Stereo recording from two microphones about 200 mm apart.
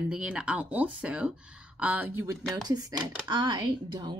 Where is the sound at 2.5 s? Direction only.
20° right (ahead or behind).